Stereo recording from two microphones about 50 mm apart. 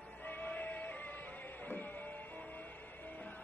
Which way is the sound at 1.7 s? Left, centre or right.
Left.